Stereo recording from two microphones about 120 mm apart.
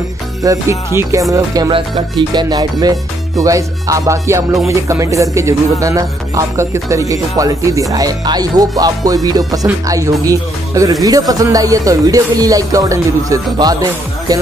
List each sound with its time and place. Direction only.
0.4 s music: 25° right (ahead or behind)
1.7 s music: 40° right (ahead or behind)